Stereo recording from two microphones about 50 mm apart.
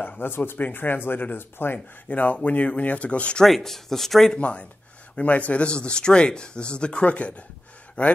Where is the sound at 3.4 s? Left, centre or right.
Centre.